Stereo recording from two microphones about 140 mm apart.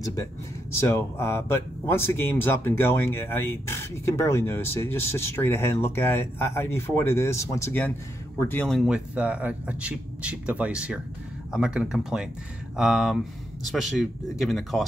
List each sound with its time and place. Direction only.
0.0 s speech: 25° left (ahead or behind)
8.6 s speech: centre (ahead or behind)